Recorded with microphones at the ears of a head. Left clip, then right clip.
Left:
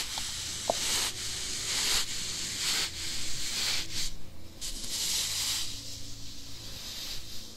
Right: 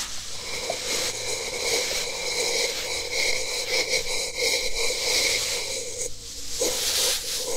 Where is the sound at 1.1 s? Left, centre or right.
Right.